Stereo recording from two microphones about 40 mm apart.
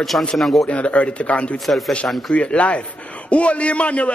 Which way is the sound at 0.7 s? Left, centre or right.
Left.